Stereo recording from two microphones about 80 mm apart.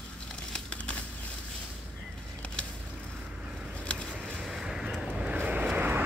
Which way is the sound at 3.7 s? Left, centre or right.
Centre.